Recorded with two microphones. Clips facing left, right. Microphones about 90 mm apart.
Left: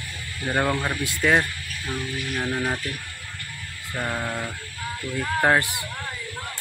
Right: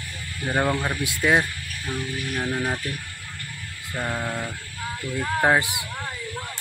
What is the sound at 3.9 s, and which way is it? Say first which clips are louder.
Speech: even; 5° right (ahead or behind).